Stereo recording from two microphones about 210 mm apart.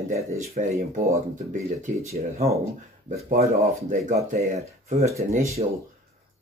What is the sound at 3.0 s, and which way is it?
Speech, 35° right (ahead or behind).